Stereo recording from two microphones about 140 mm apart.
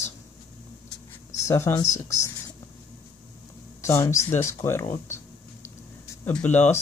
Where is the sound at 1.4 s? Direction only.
20° left (ahead or behind).